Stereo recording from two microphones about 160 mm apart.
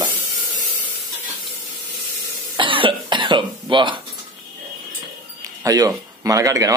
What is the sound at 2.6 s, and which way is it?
Cough, 30° right (ahead or behind).